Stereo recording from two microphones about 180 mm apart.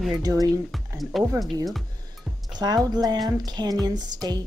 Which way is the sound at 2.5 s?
20° right (ahead or behind).